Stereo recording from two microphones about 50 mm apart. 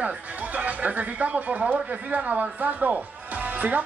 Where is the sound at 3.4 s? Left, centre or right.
Right.